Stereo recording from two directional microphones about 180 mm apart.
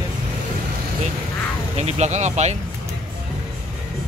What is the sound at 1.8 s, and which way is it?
Speech, 35° right (ahead or behind).